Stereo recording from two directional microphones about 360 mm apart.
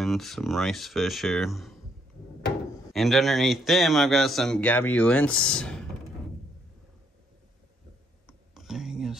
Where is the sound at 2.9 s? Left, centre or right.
Centre.